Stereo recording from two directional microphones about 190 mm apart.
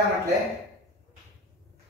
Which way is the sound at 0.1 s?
15° right (ahead or behind).